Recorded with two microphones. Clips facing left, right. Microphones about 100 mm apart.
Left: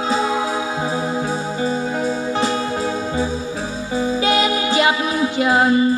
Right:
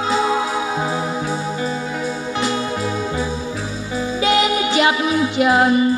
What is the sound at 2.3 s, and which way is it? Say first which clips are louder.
Music: left 1 dB; 30° left (ahead or behind).